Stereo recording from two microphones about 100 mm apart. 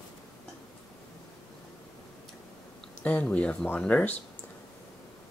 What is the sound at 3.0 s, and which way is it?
Speech, 15° left (ahead or behind).